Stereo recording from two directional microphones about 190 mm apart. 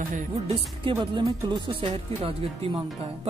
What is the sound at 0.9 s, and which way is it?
Speech, 25° right (ahead or behind).